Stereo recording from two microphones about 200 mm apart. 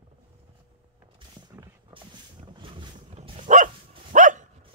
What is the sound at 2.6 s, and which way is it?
Boat, 25° right (ahead or behind).